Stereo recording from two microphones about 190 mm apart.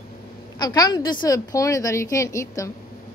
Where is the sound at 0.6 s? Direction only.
20° left (ahead or behind).